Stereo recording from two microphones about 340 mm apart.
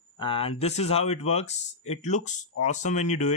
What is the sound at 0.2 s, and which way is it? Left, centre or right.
Speech, centre.